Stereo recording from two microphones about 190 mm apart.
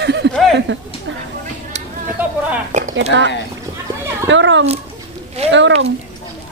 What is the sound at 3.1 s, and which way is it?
Speech, 80° right.